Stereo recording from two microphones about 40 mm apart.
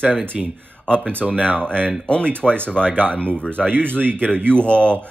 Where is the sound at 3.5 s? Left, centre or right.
Left.